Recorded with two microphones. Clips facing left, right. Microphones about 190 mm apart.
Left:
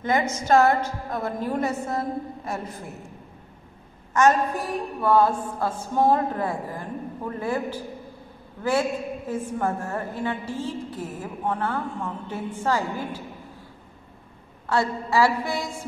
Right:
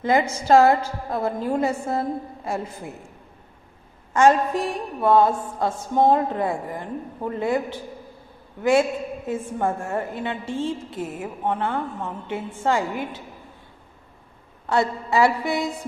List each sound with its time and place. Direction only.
0.0 s a woman's voice: 30° right (ahead or behind)
4.1 s a woman's voice: 30° right (ahead or behind)
14.7 s a woman's voice: 20° right (ahead or behind)